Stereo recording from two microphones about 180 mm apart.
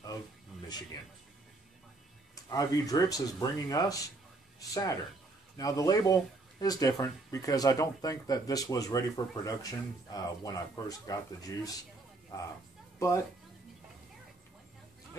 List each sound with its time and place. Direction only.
2.3 s speech: 20° left (ahead or behind)